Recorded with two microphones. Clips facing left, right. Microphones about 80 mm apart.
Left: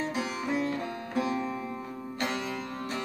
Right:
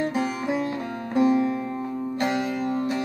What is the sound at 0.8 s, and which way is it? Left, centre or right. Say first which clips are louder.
Music: right 5 dB; right.